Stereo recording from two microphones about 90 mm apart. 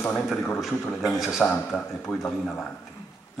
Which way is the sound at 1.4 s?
10° left (ahead or behind).